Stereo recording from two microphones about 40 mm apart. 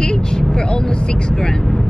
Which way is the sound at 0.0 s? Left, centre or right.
Centre.